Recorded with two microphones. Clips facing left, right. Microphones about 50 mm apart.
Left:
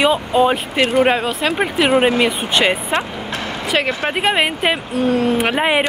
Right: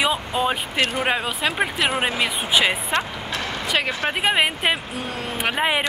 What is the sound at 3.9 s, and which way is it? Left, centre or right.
Speech, centre.